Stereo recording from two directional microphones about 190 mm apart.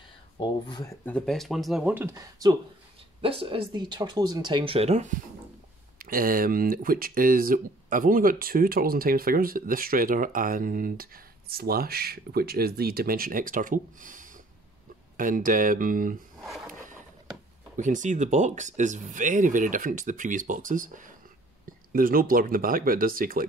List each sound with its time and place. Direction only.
0.4 s speech: 25° left (ahead or behind)
1.0 s speech: 5° left (ahead or behind); by 2.5 s 15° right (ahead or behind)
3.2 s speech: 30° right (ahead or behind)
5.9 s speech: 50° right (ahead or behind)
16.4 s a sound: centre (ahead or behind)
17.7 s speech: 40° right (ahead or behind)